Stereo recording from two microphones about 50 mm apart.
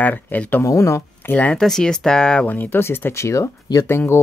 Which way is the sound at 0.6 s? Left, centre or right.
Left.